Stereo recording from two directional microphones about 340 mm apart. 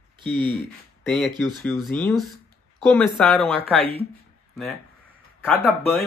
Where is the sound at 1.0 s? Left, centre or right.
Centre.